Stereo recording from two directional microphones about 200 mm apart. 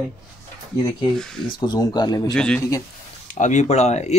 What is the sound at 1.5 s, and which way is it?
Speech, 20° left (ahead or behind).